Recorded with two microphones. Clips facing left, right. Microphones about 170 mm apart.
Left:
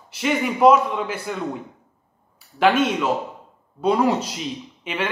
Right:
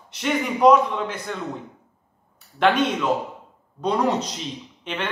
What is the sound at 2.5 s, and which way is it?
Speech, 5° left (ahead or behind).